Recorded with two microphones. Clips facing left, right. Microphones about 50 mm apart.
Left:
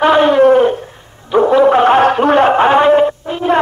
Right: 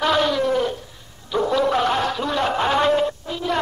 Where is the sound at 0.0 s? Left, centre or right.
Left.